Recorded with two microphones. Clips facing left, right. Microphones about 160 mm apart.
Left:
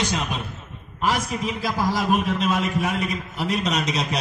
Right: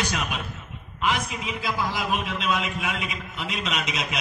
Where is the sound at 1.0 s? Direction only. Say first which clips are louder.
Left 3 dB; 40° left (ahead or behind).